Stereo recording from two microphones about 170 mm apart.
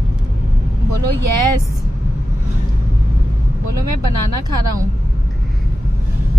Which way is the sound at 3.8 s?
20° right (ahead or behind).